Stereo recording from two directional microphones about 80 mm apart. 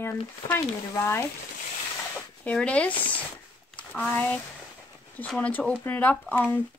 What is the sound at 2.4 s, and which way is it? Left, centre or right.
Speech, centre.